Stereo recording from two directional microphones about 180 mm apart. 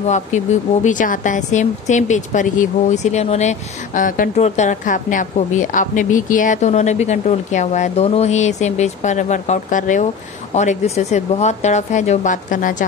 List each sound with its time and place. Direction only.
0.0 s speech: 40° left (ahead or behind)